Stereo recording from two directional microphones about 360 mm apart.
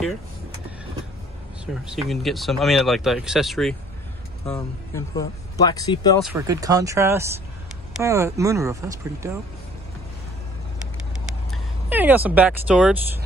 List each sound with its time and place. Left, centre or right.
1.7 s speech: centre
6.2 s speech: centre
11.5 s speech: centre